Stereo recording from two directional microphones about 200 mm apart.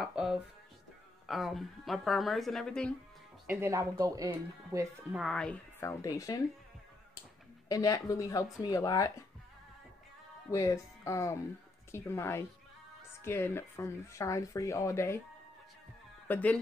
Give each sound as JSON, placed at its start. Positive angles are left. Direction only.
{"t": 0.0, "sound": "speech", "side_deg": 0}
{"t": 3.4, "sound": "speech", "side_deg": -15}
{"t": 5.1, "sound": "speech", "side_deg": 0}
{"t": 7.6, "sound": "speech", "side_deg": 15}
{"t": 10.5, "sound": "speech", "side_deg": 15}
{"t": 16.3, "sound": "speech", "side_deg": 5}